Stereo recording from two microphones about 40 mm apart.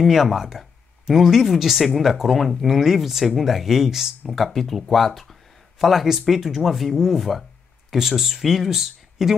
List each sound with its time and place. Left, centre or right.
0.0 s speech: centre
4.4 s speech: centre